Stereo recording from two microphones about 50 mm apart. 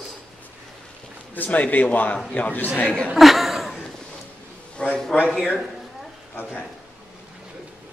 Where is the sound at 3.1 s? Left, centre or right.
Centre.